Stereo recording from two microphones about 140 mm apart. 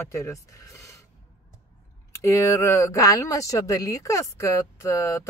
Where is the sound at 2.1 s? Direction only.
20° left (ahead or behind).